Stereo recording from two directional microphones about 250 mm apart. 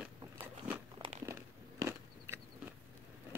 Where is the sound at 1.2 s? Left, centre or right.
Centre.